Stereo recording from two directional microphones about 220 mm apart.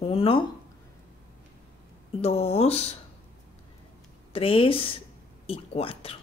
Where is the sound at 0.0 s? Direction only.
25° left (ahead or behind).